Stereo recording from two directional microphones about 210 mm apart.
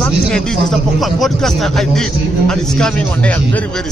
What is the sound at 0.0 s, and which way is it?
Speech, 5° left (ahead or behind).